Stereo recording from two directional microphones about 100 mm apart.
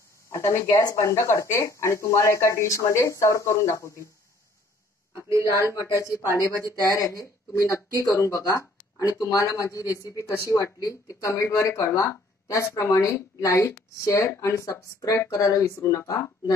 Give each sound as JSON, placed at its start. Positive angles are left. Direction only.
{"t": 0.3, "sound": "speech", "side_deg": 30}
{"t": 5.5, "sound": "speech", "side_deg": 30}
{"t": 8.3, "sound": "speech", "side_deg": 40}
{"t": 15.5, "sound": "speech", "side_deg": 25}